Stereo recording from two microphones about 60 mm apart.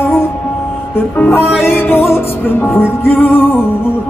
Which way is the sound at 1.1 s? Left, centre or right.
Left.